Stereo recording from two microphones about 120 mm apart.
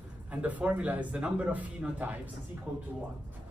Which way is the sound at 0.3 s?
10° right (ahead or behind).